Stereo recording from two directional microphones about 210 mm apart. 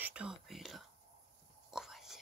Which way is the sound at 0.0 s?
5° right (ahead or behind).